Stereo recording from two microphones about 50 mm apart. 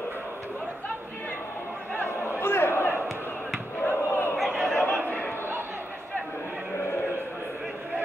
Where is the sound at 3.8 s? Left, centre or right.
Left.